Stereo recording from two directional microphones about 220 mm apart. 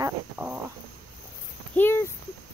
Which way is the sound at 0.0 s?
5° right (ahead or behind).